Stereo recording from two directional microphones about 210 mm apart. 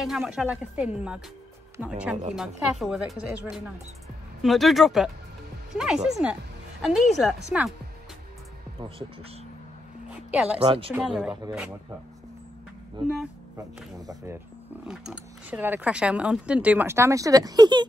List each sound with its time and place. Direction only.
0.0 s speech: 5° right (ahead or behind)
8.7 s speech: 25° right (ahead or behind)
10.3 s speech: 5° right (ahead or behind)
10.6 s speech: 25° right (ahead or behind)
10.9 s speech: 5° right (ahead or behind)
13.9 s speech: 15° right (ahead or behind)